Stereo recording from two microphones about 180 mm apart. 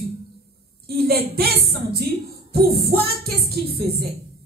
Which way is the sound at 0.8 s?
60° right (ahead or behind).